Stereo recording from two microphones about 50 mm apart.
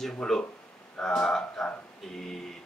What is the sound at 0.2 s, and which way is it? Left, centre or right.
Speech, centre.